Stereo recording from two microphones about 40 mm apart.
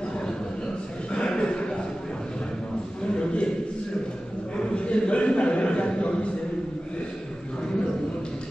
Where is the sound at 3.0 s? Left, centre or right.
Left.